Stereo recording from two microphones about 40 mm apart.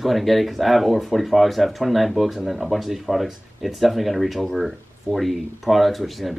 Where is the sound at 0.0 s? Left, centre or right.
Centre.